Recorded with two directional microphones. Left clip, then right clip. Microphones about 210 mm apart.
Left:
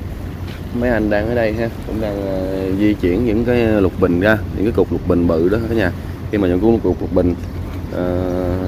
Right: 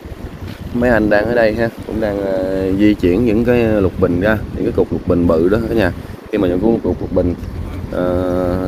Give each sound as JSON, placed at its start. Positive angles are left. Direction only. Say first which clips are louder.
{"t": 0.7, "sound": "speech", "louder": "right 4 dB", "side_deg": -20}
{"t": 3.5, "sound": "speech", "louder": "right 1 dB", "side_deg": 0}
{"t": 5.2, "sound": "speech", "louder": "right 5 dB", "side_deg": -15}
{"t": 6.6, "sound": "speech", "louder": "left 1 dB", "side_deg": 10}
{"t": 8.0, "sound": "speech", "louder": "right 3 dB", "side_deg": -20}